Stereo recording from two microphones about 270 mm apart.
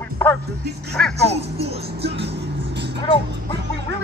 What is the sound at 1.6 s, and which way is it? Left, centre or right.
Speech, right.